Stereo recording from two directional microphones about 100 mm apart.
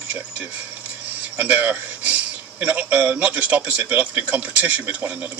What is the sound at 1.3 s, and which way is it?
A man's voice, 20° right (ahead or behind).